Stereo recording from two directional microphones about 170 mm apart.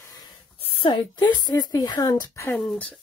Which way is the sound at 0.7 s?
30° left (ahead or behind).